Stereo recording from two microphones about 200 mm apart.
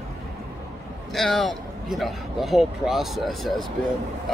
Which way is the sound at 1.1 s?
Centre (ahead or behind).